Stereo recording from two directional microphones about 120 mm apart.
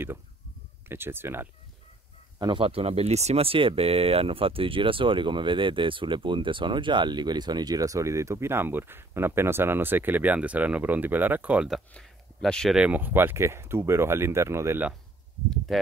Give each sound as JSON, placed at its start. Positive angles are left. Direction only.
{"t": 0.8, "sound": "speech", "side_deg": -20}
{"t": 2.3, "sound": "speech", "side_deg": -35}
{"t": 2.6, "sound": "speech", "side_deg": -55}
{"t": 11.9, "sound": "speech", "side_deg": 5}
{"t": 12.7, "sound": "speech", "side_deg": -10}
{"t": 15.7, "sound": "speech", "side_deg": 0}